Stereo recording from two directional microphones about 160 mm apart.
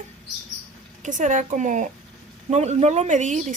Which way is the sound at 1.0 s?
50° right (ahead or behind).